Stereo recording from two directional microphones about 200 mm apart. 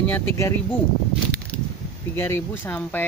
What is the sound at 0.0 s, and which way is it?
Speech, 10° left (ahead or behind).